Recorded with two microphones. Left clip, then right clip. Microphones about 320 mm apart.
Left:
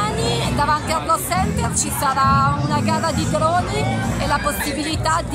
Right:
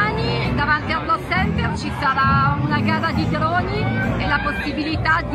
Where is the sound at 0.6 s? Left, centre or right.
Centre.